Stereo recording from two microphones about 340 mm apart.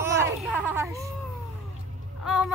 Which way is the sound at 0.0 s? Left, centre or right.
Centre.